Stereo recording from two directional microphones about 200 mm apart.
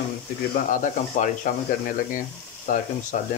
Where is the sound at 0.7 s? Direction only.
40° left (ahead or behind).